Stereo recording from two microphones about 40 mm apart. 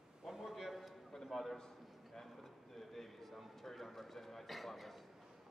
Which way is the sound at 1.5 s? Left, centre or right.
Centre.